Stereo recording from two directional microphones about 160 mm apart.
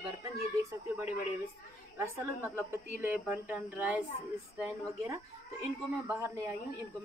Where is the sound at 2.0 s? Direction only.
15° right (ahead or behind).